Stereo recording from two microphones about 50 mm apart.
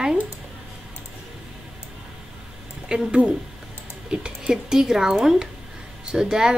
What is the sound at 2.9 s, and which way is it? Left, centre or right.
Speech, centre.